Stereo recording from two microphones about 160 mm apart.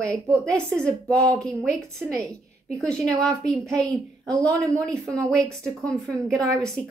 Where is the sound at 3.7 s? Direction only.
5° left (ahead or behind).